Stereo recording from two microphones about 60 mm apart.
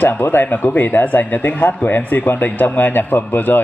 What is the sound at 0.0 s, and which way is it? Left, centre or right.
A man's voice, left.